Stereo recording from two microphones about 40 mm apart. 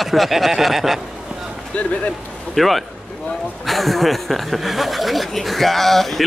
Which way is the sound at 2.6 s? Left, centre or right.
Centre.